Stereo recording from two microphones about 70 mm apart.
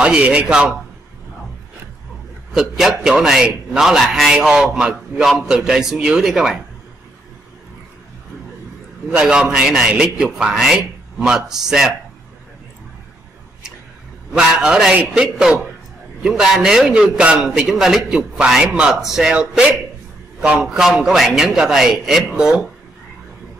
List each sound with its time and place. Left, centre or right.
0.0 s a man's voice: centre
2.5 s a man's voice: centre
9.1 s a man's voice: centre
14.3 s a man's voice: centre